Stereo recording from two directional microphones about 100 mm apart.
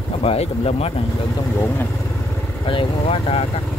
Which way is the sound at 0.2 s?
80° left.